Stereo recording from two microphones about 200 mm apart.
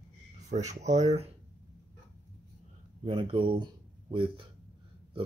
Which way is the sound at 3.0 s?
25° right (ahead or behind).